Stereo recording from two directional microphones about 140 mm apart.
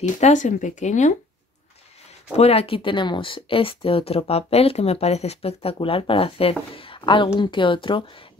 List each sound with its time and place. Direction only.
0.0 s speech: 60° left (ahead or behind)
2.3 s speech: 45° left (ahead or behind)